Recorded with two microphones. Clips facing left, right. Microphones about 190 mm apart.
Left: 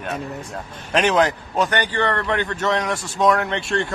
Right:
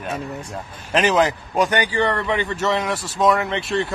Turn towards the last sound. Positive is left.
turn(degrees=0)  # may be behind; listen again after turning